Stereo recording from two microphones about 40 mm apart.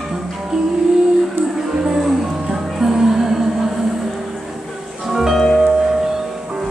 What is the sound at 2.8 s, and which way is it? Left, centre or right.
Music, centre.